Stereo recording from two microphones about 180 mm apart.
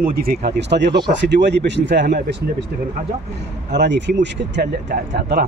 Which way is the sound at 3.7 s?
75° right (ahead or behind).